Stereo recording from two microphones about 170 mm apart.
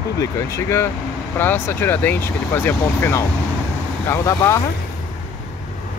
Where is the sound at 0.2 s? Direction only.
15° left (ahead or behind).